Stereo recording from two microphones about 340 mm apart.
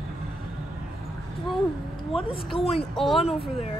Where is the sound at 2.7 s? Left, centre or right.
Centre.